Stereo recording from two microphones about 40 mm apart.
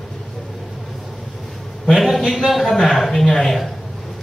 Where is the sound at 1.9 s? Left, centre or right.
Centre.